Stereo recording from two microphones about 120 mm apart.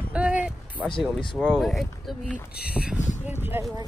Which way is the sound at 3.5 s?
20° right (ahead or behind).